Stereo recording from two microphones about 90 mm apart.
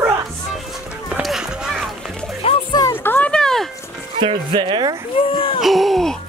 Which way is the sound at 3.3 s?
5° left (ahead or behind).